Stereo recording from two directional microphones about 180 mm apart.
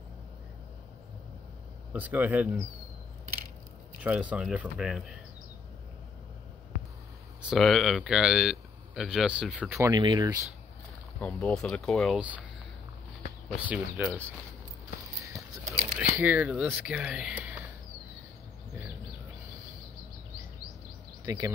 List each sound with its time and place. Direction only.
1.9 s speech: 10° right (ahead or behind)
4.0 s speech: 5° right (ahead or behind)
7.4 s speech: centre (ahead or behind); by 10.4 s 20° right (ahead or behind)
11.1 s speech: 5° left (ahead or behind)
13.7 s speech: 10° right (ahead or behind)
16.0 s speech: 10° right (ahead or behind)
21.3 s speech: 20° right (ahead or behind)